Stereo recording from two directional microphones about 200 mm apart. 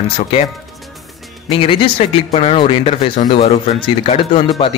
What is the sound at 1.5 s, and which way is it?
Speech, 25° left (ahead or behind).